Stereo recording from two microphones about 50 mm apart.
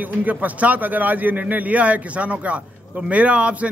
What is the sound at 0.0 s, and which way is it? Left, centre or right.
A man's voice, right.